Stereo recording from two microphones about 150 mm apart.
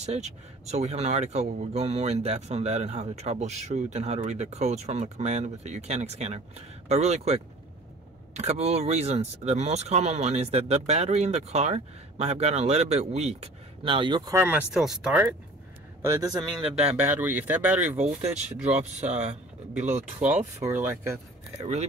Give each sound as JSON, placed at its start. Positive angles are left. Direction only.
{"t": 0.0, "sound": "speech", "side_deg": -45}
{"t": 14.3, "sound": "speech", "side_deg": -15}
{"t": 14.7, "sound": "speech", "side_deg": -5}
{"t": 16.0, "sound": "speech", "side_deg": -20}
{"t": 16.9, "sound": "speech", "side_deg": -10}
{"t": 17.9, "sound": "speech", "side_deg": -50}
{"t": 20.6, "sound": "speech", "side_deg": -15}